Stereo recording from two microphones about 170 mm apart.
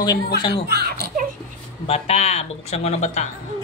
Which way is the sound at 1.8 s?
35° left (ahead or behind).